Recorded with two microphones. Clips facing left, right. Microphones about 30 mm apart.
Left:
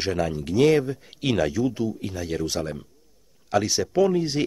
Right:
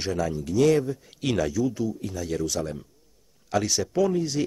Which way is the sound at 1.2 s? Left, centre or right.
Centre.